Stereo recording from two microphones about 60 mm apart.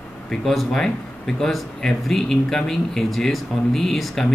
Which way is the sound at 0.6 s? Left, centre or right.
Centre.